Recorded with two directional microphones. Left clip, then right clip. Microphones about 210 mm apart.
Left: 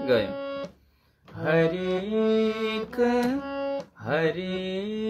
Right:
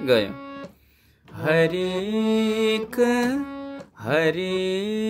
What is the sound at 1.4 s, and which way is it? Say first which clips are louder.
Speech: right 3 dB; 55° right (ahead or behind).